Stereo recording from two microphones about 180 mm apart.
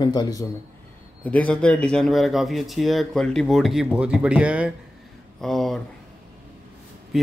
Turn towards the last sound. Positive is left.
turn(degrees=0)  # may be behind; listen again after turning